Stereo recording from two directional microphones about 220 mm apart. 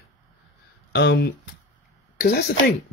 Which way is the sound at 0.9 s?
50° left (ahead or behind).